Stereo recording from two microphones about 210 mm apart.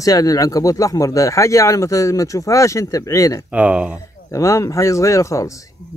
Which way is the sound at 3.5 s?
5° right (ahead or behind).